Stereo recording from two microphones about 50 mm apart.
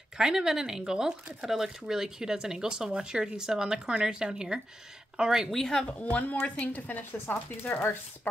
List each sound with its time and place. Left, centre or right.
0.2 s speech: centre
5.5 s speech: centre
5.9 s speech: left